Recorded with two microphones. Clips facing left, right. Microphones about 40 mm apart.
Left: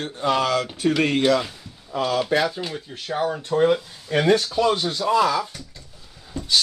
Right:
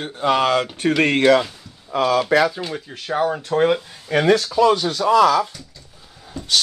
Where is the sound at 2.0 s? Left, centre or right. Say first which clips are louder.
Right 5 dB; right.